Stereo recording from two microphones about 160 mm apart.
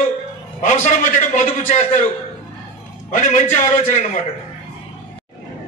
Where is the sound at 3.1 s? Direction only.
50° left (ahead or behind).